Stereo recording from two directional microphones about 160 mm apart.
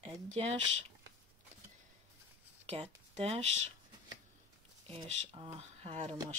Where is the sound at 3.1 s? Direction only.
40° right (ahead or behind).